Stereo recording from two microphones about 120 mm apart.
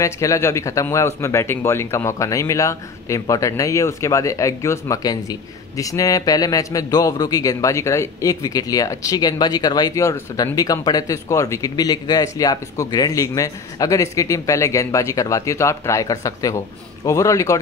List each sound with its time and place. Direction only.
0.0 s speech: 25° left (ahead or behind)